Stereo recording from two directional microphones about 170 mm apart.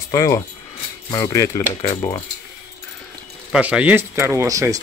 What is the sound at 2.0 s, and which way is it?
Speech, 35° left (ahead or behind).